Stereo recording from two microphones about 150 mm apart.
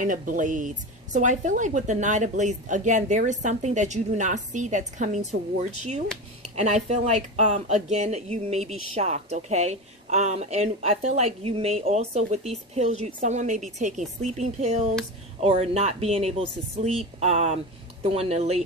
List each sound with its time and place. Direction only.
0.0 s speech: 65° right (ahead or behind); by 18.6 s 45° right (ahead or behind)